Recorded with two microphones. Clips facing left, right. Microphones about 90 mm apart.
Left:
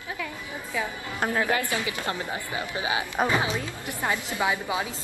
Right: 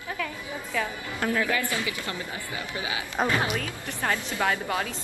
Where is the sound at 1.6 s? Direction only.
25° left (ahead or behind).